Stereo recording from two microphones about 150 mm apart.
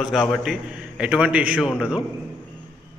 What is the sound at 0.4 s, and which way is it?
A man's voice, 5° right (ahead or behind).